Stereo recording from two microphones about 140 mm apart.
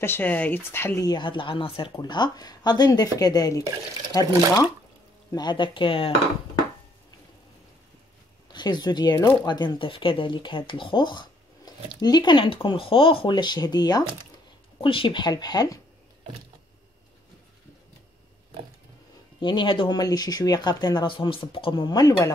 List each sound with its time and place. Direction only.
0.0 s speech: 15° left (ahead or behind)
1.0 s speech: 35° left (ahead or behind)
8.5 s speech: 30° left (ahead or behind)
19.4 s speech: 35° left (ahead or behind)